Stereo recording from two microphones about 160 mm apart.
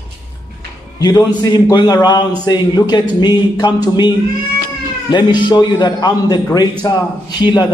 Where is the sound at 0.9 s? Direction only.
25° left (ahead or behind).